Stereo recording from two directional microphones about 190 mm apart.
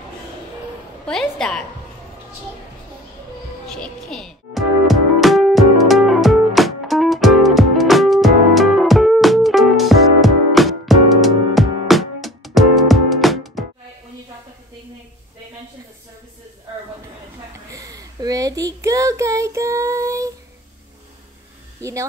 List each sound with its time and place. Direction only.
1.0 s a woman's voice: 5° left (ahead or behind)
3.6 s music: 5° left (ahead or behind)
17.6 s child singing: 15° right (ahead or behind)